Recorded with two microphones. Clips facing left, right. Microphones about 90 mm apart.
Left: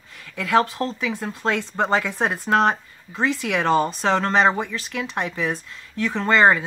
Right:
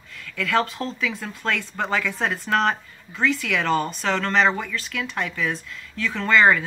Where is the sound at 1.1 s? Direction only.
25° left (ahead or behind).